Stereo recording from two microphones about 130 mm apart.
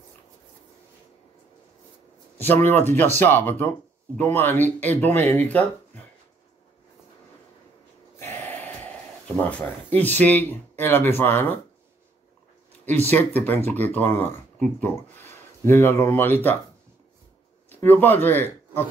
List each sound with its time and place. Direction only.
2.3 s speech: 15° left (ahead or behind)
8.2 s a sound: 15° left (ahead or behind)
9.5 s speech: 10° left (ahead or behind)
13.1 s speech: 15° left (ahead or behind)
17.6 s speech: 15° left (ahead or behind)